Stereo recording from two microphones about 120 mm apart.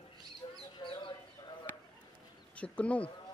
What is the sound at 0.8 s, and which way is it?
Chicken, 45° left (ahead or behind).